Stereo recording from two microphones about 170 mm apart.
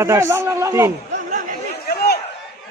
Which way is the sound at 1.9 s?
70° left (ahead or behind).